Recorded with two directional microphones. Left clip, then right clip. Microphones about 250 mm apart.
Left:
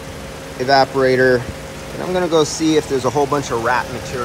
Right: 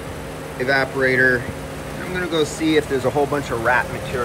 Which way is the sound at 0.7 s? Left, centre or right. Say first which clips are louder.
Left 5 dB; centre.